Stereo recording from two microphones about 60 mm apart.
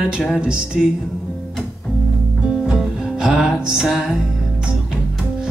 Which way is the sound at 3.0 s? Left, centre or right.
Centre.